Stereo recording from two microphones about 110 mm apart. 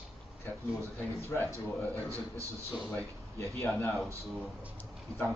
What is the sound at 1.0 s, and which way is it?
Speech, 15° left (ahead or behind).